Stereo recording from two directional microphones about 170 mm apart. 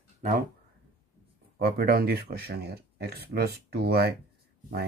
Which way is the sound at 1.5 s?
65° right (ahead or behind).